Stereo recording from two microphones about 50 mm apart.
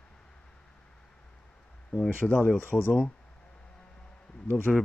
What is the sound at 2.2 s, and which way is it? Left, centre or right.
Speech, left.